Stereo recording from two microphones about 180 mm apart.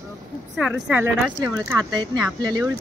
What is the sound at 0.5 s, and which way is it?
Speech, 5° right (ahead or behind).